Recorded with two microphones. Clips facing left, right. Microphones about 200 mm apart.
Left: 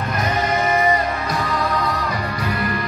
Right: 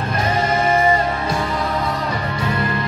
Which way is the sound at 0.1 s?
30° right (ahead or behind).